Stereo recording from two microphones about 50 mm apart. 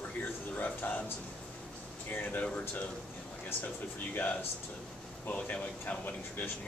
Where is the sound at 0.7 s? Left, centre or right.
Left.